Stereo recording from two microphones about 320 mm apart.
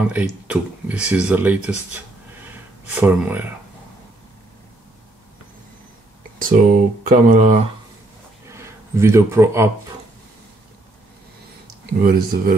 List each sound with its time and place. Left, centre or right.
0.0 s speech: centre
6.4 s speech: right
8.5 s speech: centre
11.8 s speech: right